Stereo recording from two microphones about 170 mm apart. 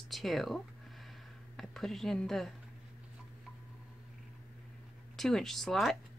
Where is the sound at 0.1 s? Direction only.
Centre (ahead or behind).